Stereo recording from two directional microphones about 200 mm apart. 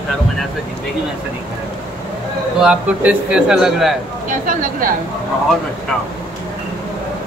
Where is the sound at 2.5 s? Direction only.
5° right (ahead or behind).